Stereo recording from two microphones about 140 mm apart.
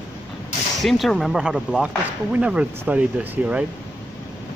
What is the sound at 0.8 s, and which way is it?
Speech, centre (ahead or behind).